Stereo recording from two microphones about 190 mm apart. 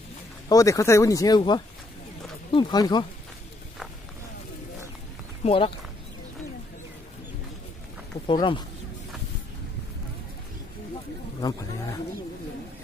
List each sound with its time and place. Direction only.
0.5 s speech: 20° left (ahead or behind)
5.4 s speech: 30° left (ahead or behind)
8.3 s speech: 25° left (ahead or behind)
11.4 s speech: 20° left (ahead or behind)